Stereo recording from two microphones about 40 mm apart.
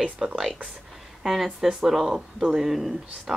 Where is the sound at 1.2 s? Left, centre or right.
Centre.